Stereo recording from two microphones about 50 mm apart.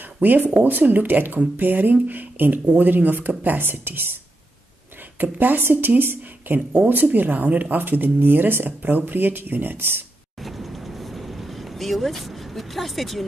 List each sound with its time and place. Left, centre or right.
0.2 s a woman's voice: right
2.6 s speech: right
2.9 s a woman's voice: right
5.2 s a woman's voice: right
10.4 s a sound: centre